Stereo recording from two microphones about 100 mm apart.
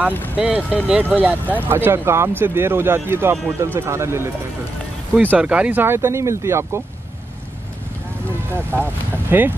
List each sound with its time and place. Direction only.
0.4 s speech: 15° right (ahead or behind)
5.1 s speech: 15° right (ahead or behind)
8.5 s speech: 20° right (ahead or behind)